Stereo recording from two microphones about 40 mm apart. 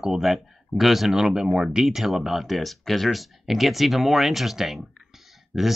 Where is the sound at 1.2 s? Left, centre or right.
Centre.